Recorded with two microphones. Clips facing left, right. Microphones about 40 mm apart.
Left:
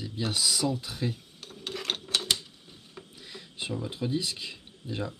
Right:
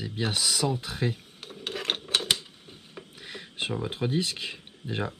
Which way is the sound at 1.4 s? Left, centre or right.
Right.